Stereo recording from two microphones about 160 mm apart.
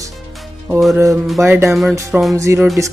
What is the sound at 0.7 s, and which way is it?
Speech, centre (ahead or behind).